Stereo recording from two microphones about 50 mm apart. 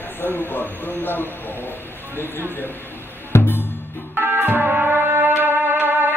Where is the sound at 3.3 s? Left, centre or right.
Left.